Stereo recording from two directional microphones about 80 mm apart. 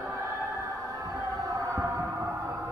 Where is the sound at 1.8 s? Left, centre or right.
Right.